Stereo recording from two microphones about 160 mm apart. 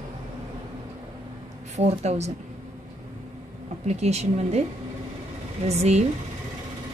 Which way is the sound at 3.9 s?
45° right (ahead or behind).